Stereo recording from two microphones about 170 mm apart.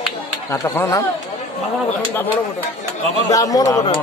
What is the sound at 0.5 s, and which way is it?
Speech, 20° left (ahead or behind).